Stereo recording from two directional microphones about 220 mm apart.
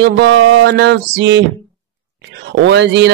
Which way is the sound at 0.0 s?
55° right (ahead or behind).